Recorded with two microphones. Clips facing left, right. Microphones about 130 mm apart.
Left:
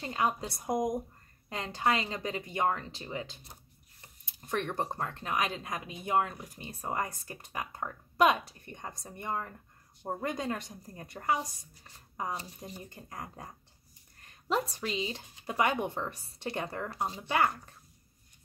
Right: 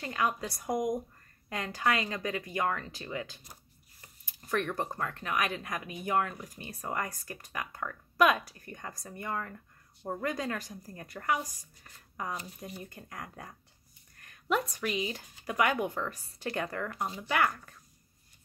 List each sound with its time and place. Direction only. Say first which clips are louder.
0.0 s speech: left 1 dB; 25° left (ahead or behind)
4.5 s speech: right 1 dB; 25° left (ahead or behind)
6.3 s speech: right 1 dB; centre (ahead or behind)
6.6 s speech: left 1 dB; 25° left (ahead or behind)